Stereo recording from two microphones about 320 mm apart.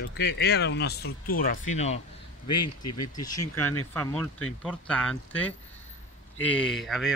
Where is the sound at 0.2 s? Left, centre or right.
Left.